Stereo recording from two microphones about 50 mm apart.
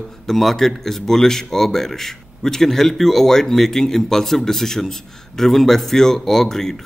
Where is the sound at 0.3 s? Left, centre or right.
Centre.